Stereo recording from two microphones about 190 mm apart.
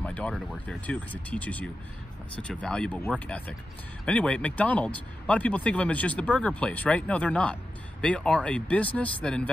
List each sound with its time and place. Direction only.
0.0 s speech: 5° left (ahead or behind)